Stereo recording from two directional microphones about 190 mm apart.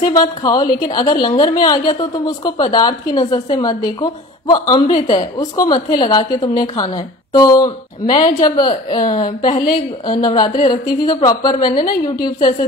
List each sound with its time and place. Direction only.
0.1 s a woman's voice: 20° left (ahead or behind)